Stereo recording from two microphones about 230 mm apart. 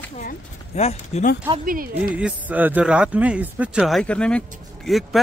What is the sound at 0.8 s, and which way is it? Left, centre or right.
Speech, left.